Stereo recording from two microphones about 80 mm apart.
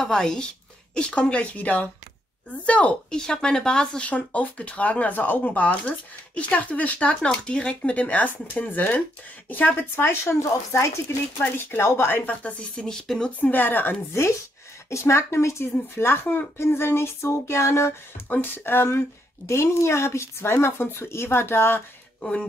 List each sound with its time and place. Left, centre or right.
0.0 s speech: centre; by 12.2 s left
12.3 s speech: centre
13.4 s speech: left
14.9 s speech: left
18.3 s speech: left
22.2 s speech: centre